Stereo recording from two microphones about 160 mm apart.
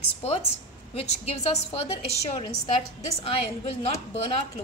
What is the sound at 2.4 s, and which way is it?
A woman's voice, 30° left (ahead or behind).